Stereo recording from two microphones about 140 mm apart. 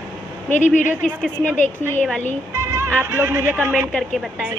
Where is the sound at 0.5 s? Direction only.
60° left (ahead or behind).